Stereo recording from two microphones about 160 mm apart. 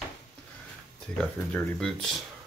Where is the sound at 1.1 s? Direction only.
5° left (ahead or behind).